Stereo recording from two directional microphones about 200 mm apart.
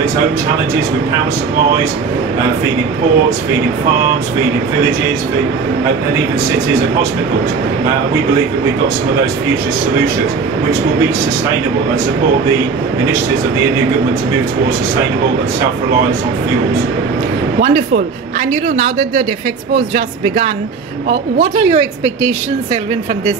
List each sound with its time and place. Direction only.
18.8 s speech: 40° right (ahead or behind)
21.4 s a woman's voice: 25° right (ahead or behind)